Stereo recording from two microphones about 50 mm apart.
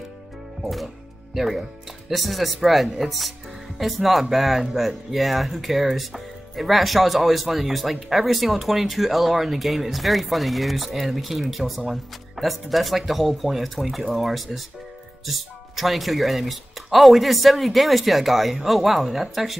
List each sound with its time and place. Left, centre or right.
1.3 s speech: centre